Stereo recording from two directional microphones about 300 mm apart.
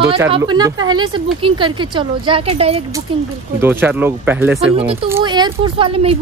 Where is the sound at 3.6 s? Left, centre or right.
Centre.